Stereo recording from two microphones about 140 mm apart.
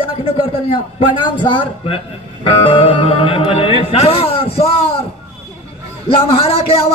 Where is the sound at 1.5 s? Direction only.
40° left (ahead or behind).